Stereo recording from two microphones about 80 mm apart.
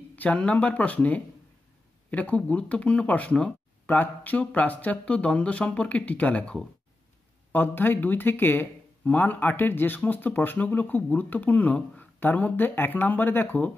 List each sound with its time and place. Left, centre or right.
0.1 s speech: centre
7.5 s speech: left